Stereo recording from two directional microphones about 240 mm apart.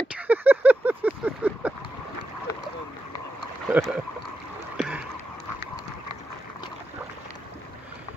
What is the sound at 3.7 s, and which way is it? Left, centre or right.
Speech, centre.